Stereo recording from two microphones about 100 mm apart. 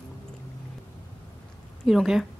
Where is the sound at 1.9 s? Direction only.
Centre (ahead or behind).